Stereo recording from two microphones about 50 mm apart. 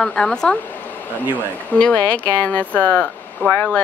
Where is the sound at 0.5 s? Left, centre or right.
Left.